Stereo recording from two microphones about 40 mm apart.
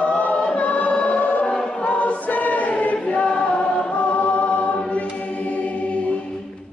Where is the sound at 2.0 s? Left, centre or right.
Left.